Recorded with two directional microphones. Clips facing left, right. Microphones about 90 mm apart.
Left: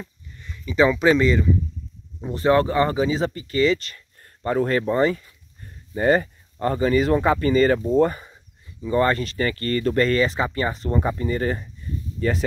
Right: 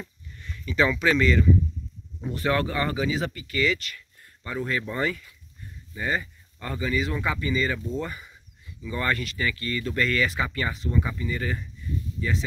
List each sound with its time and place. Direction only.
0.0 s speech: 10° left (ahead or behind); by 5.3 s 30° left (ahead or behind)
5.9 s speech: 50° left (ahead or behind)
12.2 s speech: 50° left (ahead or behind)